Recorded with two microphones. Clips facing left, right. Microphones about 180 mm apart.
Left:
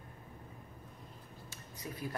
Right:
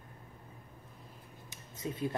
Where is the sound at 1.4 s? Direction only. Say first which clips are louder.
Right 6 dB; 25° right (ahead or behind).